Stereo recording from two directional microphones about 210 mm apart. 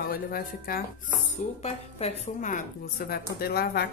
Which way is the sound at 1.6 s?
35° left (ahead or behind).